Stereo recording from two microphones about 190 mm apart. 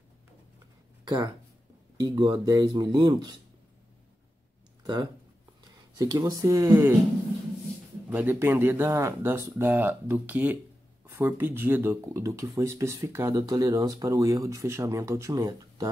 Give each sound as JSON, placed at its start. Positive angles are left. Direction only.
{"t": 1.0, "sound": "speech", "side_deg": -20}
{"t": 5.9, "sound": "speech", "side_deg": -20}
{"t": 8.1, "sound": "speech", "side_deg": -10}